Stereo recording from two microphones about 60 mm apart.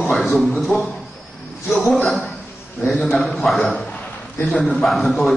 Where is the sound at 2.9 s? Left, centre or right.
Centre.